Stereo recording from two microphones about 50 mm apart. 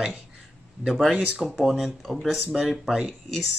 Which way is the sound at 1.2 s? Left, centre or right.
Right.